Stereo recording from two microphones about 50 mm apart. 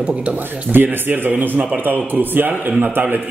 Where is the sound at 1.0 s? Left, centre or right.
Right.